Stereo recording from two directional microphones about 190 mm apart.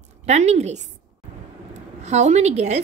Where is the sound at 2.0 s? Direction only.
35° right (ahead or behind).